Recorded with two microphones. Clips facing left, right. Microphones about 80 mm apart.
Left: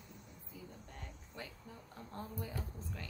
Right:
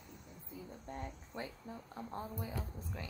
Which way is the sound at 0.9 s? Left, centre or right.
Right.